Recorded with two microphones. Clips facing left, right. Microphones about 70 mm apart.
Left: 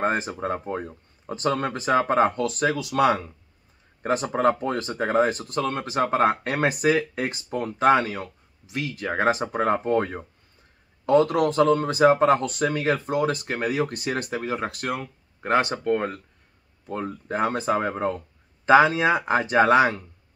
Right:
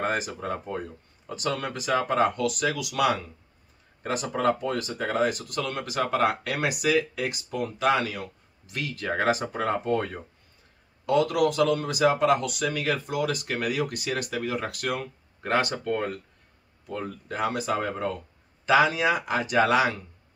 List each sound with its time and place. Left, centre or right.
0.0 s speech: left
8.6 s speech: centre; by 20.0 s left